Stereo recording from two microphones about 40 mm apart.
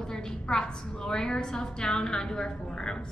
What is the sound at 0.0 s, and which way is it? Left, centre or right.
A woman's voice, centre.